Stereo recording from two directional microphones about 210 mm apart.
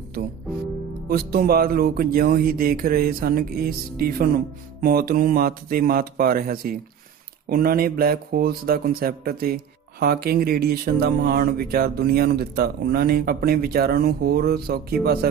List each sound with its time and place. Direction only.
1.0 s speech: 45° right (ahead or behind)